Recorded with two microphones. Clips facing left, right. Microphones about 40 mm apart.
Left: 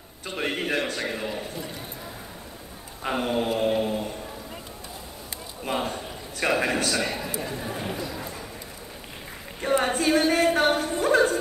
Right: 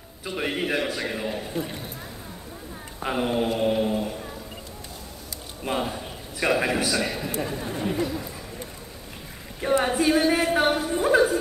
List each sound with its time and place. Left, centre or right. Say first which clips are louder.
0.4 s mantra: right 1 dB; centre
3.0 s mantra: right 1 dB; centre
5.6 s a sound: right 1 dB; centre
6.6 s mantra: right 1 dB; centre
9.6 s a woman's voice: right 1 dB; centre
9.9 s mantra: right 1 dB; centre
10.9 s a woman's voice: right 1 dB; centre